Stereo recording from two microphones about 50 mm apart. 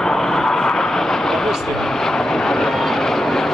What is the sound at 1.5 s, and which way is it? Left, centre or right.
Vehicle, centre.